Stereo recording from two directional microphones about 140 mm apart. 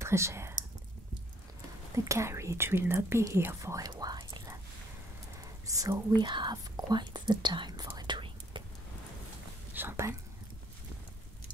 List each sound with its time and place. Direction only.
0.0 s speech: 20° right (ahead or behind)
2.0 s speech: 20° right (ahead or behind)
9.8 s speech: 20° right (ahead or behind)